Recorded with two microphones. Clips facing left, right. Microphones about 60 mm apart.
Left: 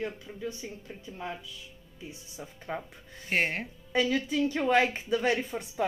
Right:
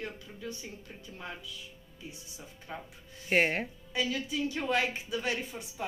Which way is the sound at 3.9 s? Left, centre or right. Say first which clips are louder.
Left 6 dB; left.